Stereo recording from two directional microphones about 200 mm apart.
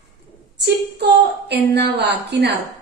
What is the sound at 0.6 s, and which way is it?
A woman's voice, 55° right (ahead or behind).